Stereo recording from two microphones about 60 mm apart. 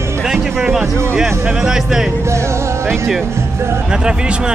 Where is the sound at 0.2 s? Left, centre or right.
Centre.